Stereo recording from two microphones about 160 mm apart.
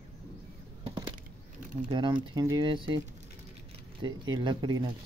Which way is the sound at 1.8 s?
30° right (ahead or behind).